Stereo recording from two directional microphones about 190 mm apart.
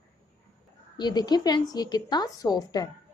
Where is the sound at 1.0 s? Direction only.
20° left (ahead or behind).